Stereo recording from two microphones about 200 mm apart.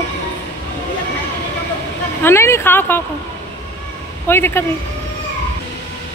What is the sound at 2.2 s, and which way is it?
Speech, 10° left (ahead or behind).